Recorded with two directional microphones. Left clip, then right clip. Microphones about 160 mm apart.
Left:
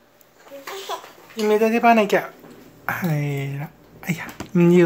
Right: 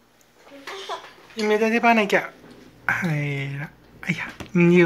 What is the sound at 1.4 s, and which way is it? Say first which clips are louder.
Speech: left 2 dB; 15° left (ahead or behind).